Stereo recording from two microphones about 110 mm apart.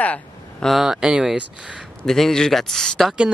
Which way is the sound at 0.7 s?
5° right (ahead or behind).